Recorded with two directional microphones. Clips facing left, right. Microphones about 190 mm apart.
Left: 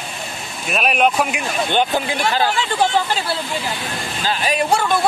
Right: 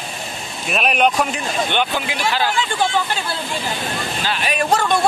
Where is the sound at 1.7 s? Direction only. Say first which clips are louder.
Left 3 dB; 40° left (ahead or behind).